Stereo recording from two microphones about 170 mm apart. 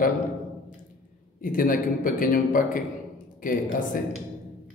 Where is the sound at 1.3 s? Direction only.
55° left (ahead or behind).